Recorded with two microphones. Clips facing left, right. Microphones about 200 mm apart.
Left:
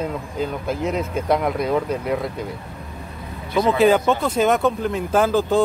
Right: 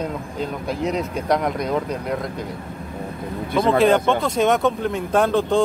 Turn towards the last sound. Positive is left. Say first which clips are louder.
# even
turn(degrees=5)  # may be behind; listen again after turning